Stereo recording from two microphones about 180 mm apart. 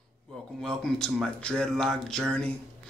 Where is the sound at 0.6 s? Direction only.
5° left (ahead or behind).